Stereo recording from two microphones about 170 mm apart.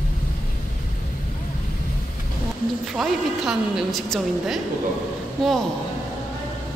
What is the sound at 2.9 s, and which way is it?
A woman's voice, 5° right (ahead or behind).